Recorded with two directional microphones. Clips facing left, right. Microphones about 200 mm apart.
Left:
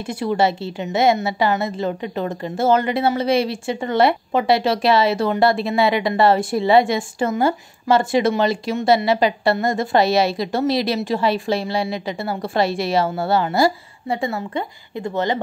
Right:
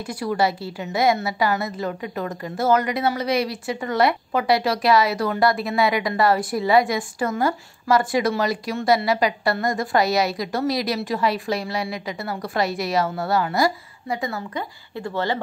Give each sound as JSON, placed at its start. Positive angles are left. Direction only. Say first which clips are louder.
{"t": 0.0, "sound": "a woman's voice", "louder": "left 3 dB", "side_deg": 25}